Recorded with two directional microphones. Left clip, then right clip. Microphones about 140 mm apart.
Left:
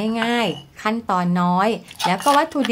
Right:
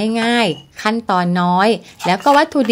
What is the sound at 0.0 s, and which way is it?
Speech, 35° right (ahead or behind).